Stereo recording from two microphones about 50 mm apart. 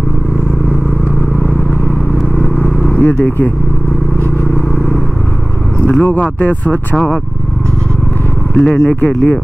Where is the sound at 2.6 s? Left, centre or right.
Left.